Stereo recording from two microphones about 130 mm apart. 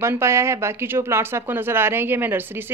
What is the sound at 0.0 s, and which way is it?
Speech, 20° right (ahead or behind).